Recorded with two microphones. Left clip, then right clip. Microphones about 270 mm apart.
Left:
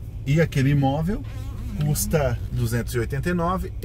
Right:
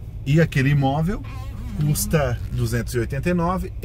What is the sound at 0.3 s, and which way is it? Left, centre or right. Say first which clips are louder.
Speech: right 2 dB; right.